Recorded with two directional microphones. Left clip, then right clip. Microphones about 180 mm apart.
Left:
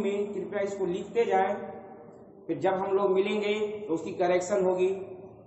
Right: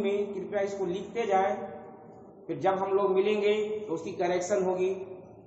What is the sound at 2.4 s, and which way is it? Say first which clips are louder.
A man's voice: even; 30° left (ahead or behind).